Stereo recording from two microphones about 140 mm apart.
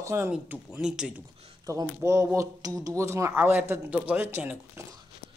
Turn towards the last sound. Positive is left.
turn(degrees=-15)  # may be behind; listen again after turning